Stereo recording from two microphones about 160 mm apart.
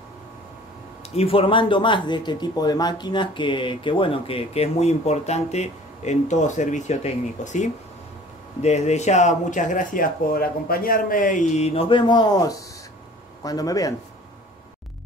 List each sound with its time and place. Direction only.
1.1 s a man's voice: 35° left (ahead or behind)